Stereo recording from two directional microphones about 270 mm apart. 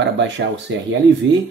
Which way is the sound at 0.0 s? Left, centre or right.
Right.